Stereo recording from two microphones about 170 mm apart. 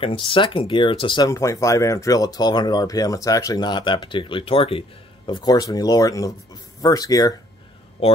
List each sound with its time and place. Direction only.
0.0 s speech: 30° left (ahead or behind)